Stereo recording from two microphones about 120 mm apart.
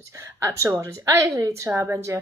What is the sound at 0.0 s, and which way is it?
Speech, 25° right (ahead or behind).